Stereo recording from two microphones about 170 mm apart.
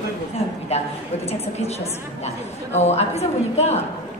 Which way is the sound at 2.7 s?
40° left (ahead or behind).